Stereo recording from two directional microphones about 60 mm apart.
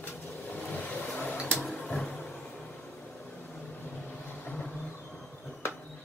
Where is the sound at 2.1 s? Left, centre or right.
Left.